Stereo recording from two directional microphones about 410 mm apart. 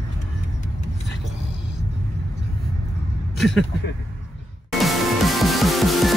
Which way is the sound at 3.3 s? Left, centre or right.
Centre.